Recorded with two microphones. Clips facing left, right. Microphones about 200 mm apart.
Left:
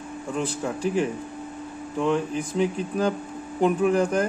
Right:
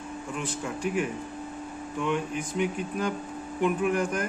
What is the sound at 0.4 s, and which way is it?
Speech, 35° left (ahead or behind).